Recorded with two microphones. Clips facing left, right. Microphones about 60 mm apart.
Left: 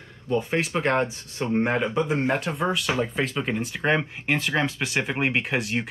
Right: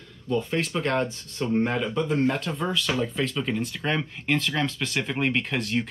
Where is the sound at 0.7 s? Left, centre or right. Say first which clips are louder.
Left 3 dB; left.